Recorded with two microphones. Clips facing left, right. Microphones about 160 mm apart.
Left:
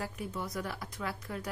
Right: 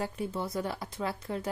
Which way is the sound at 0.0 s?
30° right (ahead or behind).